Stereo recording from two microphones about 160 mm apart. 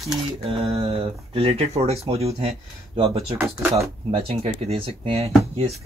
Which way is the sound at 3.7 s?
35° right (ahead or behind).